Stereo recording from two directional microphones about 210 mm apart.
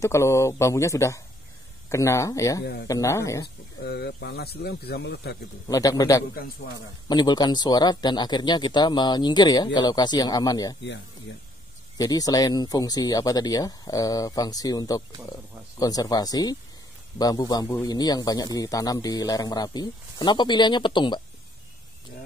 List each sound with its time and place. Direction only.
0.0 s speech: 15° left (ahead or behind)
2.6 s speech: 50° left (ahead or behind)
2.9 s speech: 15° left (ahead or behind)
3.8 s speech: 50° left (ahead or behind)
5.7 s a man's voice: 15° left (ahead or behind)
12.0 s a man's voice: 15° left (ahead or behind)